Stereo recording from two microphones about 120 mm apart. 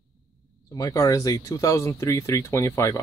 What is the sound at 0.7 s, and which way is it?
Speech, 30° left (ahead or behind).